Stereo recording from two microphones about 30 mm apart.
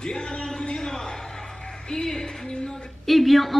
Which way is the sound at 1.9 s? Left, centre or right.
Centre.